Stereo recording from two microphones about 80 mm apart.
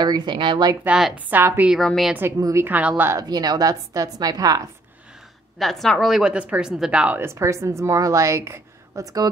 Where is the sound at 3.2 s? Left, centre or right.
Right.